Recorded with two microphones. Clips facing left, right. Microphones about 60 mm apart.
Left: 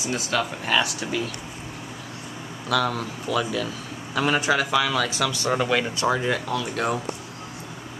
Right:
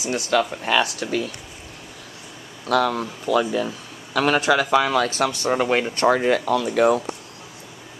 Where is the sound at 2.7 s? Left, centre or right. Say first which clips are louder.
Right 4 dB; right.